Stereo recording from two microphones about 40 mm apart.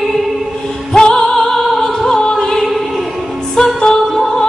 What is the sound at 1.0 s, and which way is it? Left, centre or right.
Music, centre.